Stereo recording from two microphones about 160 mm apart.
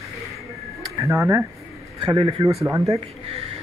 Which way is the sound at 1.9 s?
30° right (ahead or behind).